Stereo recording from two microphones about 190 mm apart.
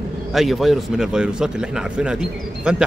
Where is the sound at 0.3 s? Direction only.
Centre (ahead or behind).